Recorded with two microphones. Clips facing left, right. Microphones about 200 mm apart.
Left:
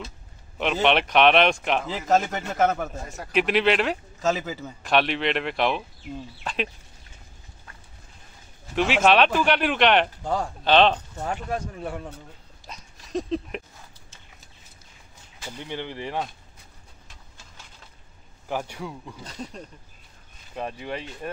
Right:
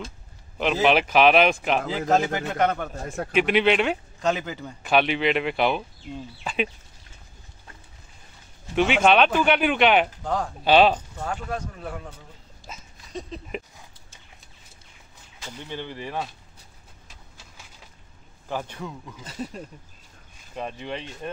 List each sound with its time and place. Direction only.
0.6 s a man's voice: centre (ahead or behind)
3.1 s a man's voice: 55° right (ahead or behind)
3.3 s a man's voice: centre (ahead or behind)
8.7 s a man's voice: centre (ahead or behind)
10.2 s speech: 10° left (ahead or behind)
10.6 s speech: 5° right (ahead or behind)
11.2 s a man's voice: 5° left (ahead or behind)
12.7 s dog: 5° right (ahead or behind)
15.4 s speech: 15° left (ahead or behind)
17.4 s a sound: 10° right (ahead or behind)
18.5 s speech: 10° left (ahead or behind)
19.2 s a man's voice: 5° right (ahead or behind)
20.5 s speech: 5° left (ahead or behind)